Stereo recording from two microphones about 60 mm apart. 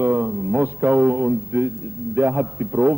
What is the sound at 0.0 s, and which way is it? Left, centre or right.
A man's voice, right.